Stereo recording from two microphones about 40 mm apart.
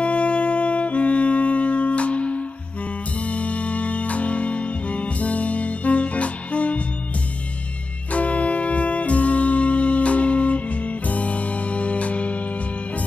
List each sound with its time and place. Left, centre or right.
0.0 s music: left
8.1 s music: left